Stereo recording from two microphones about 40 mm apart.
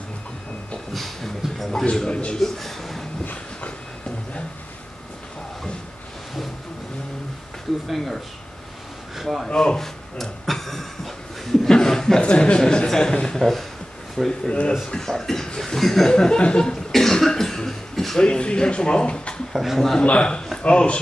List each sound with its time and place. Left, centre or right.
0.9 s a sound: centre
1.9 s speech: left
2.3 s a man's voice: centre
7.9 s speech: centre
9.6 s a man's voice: centre
10.1 s a sound: centre
11.7 s chuckle: centre
12.2 s a man's voice: left; by 16.1 s centre
16.1 s speech: left
16.9 s cough: centre
18.2 s speech: left
19.5 s speech: centre
20.0 s speech: left